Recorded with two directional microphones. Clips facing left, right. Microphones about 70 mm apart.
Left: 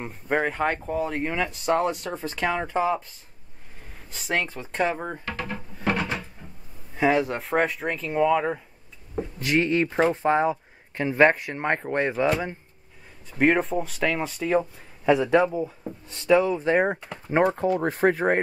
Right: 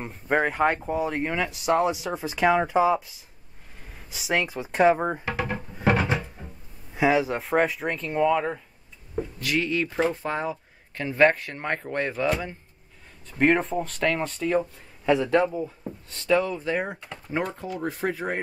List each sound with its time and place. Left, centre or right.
0.0 s speech: centre; by 5.9 s right
6.4 s music: centre
7.0 s speech: centre
9.4 s speech: left
13.4 s speech: centre
16.6 s speech: left